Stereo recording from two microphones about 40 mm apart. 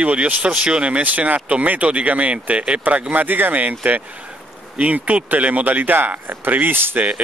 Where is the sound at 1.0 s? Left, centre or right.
Right.